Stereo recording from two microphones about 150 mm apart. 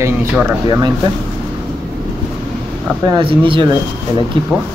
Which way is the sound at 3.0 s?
30° right (ahead or behind).